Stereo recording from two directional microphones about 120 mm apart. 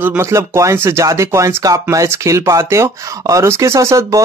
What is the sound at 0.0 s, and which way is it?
Speech, 20° right (ahead or behind).